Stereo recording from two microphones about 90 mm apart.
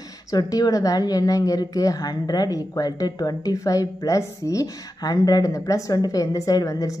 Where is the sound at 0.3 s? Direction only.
45° left (ahead or behind).